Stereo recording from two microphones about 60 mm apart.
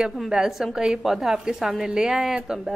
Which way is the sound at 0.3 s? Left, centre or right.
Centre.